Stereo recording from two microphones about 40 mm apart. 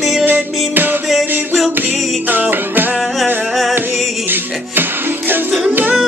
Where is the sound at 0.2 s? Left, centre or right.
Right.